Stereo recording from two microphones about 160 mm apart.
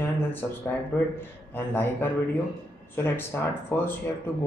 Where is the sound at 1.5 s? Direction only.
10° left (ahead or behind).